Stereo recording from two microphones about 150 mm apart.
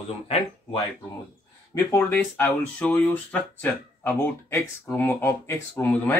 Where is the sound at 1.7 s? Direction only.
15° left (ahead or behind).